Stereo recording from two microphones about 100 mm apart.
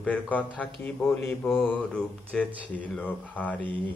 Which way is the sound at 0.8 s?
20° left (ahead or behind).